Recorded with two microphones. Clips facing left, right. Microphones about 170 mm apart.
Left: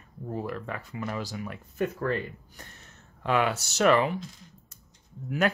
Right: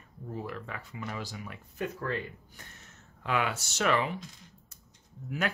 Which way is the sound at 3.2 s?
40° left (ahead or behind).